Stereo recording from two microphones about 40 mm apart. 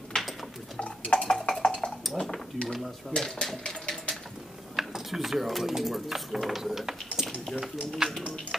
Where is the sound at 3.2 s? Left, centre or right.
Centre.